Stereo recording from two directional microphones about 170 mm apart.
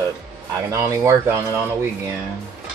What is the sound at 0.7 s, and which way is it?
Speech, 15° right (ahead or behind).